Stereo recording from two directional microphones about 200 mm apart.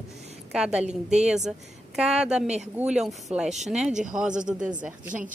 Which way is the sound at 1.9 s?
5° right (ahead or behind).